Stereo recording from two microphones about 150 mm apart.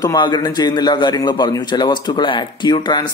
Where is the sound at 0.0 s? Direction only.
25° left (ahead or behind).